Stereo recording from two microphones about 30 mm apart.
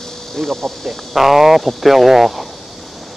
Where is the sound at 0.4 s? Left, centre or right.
Centre.